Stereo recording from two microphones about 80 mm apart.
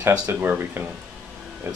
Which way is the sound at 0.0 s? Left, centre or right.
Right.